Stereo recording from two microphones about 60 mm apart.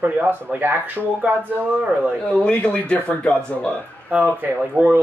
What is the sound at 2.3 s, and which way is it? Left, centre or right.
Speech, left.